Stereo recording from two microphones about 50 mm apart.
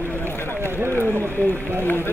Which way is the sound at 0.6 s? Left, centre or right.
Right.